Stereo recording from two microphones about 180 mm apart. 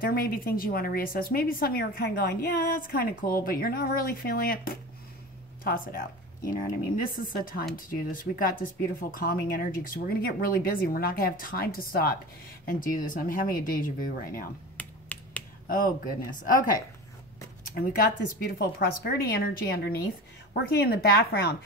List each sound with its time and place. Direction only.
0.0 s speech: 55° left (ahead or behind)
14.8 s finger snapping: 10° left (ahead or behind)
15.6 s speech: 50° left (ahead or behind)